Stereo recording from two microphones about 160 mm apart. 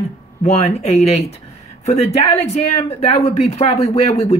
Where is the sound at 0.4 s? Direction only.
45° left (ahead or behind).